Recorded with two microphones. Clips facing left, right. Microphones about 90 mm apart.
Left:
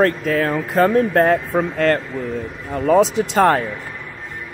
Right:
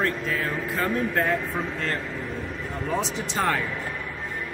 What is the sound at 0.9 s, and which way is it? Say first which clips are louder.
Speech: left 9 dB; 50° left (ahead or behind).